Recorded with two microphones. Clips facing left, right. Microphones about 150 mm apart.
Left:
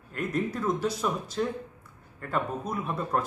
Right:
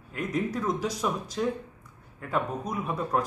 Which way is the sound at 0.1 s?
Centre (ahead or behind).